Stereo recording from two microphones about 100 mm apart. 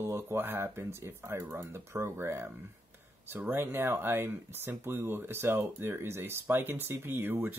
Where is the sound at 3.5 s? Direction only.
25° right (ahead or behind).